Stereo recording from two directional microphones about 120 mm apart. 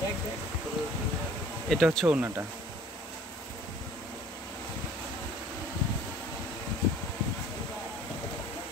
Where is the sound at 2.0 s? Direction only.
15° right (ahead or behind).